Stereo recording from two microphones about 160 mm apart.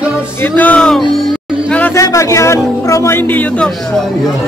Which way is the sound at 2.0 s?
20° left (ahead or behind).